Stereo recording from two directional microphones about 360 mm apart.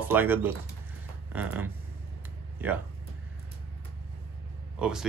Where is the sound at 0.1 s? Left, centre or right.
Centre.